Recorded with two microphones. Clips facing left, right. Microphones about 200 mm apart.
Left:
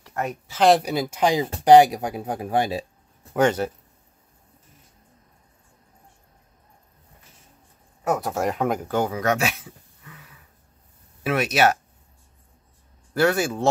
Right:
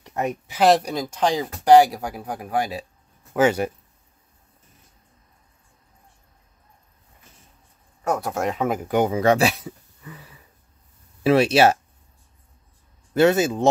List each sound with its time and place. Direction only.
0.0 s speech: 20° right (ahead or behind)
0.7 s speech: 5° left (ahead or behind); by 2.8 s 25° left (ahead or behind)
3.3 s speech: 10° right (ahead or behind)
8.1 s speech: centre (ahead or behind)
8.8 s speech: 20° right (ahead or behind)
13.1 s speech: 20° right (ahead or behind)